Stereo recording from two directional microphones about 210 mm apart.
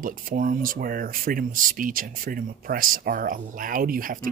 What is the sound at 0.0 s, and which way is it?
Speech, 40° right (ahead or behind).